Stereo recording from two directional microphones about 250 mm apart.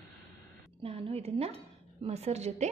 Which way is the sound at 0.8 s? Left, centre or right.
Right.